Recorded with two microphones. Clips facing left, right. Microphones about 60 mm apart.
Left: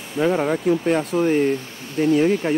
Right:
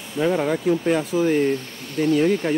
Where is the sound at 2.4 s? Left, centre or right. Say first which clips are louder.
Left 1 dB; centre.